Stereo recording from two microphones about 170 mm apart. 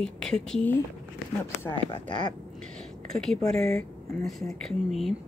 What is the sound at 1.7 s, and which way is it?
Speech, 30° left (ahead or behind).